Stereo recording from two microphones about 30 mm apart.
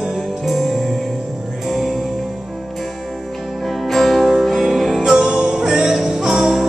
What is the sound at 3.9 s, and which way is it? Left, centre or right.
Music, centre.